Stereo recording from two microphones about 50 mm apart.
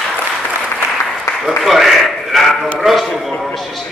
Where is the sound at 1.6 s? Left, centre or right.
Centre.